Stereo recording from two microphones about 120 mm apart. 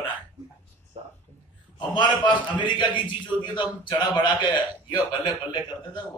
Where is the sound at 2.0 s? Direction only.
40° left (ahead or behind).